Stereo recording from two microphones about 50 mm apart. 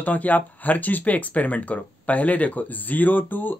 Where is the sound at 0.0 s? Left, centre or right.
Left.